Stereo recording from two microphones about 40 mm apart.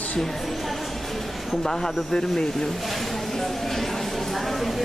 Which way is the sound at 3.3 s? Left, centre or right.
Centre.